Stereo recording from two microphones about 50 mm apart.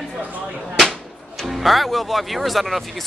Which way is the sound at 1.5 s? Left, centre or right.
Centre.